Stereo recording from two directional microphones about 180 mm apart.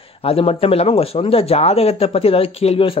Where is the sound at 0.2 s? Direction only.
30° left (ahead or behind).